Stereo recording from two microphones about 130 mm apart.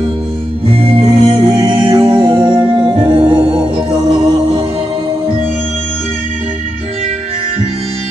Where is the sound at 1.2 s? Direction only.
35° right (ahead or behind).